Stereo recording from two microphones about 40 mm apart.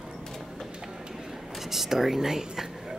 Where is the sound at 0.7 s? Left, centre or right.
Right.